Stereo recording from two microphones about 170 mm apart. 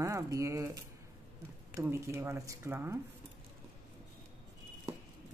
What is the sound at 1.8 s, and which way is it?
Speech, 15° right (ahead or behind).